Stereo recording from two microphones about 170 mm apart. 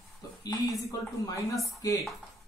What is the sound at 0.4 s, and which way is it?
Speech, 20° left (ahead or behind).